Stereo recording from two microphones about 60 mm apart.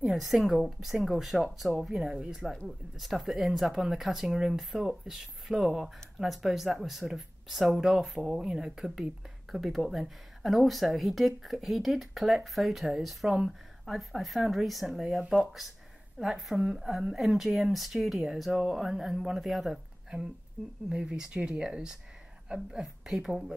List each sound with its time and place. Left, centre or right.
0.0 s speech: centre
20.9 s speech: centre